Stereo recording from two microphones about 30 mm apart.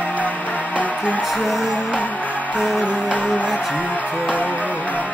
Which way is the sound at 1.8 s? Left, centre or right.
Left.